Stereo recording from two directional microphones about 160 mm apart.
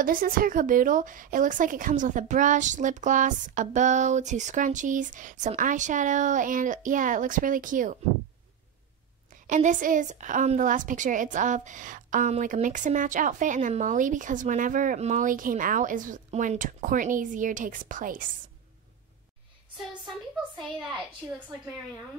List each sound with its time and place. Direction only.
0.0 s a woman's voice: 60° right (ahead or behind)
9.3 s a woman's voice: 50° right (ahead or behind)